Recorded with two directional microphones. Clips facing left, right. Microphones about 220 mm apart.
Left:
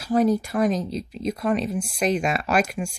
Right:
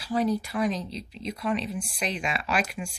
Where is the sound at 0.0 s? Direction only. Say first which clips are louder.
Left 6 dB; 45° left (ahead or behind).